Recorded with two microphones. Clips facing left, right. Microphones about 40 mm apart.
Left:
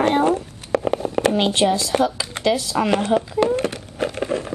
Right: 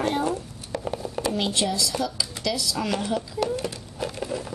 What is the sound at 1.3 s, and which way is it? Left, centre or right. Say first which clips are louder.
Speech: left 7 dB; left.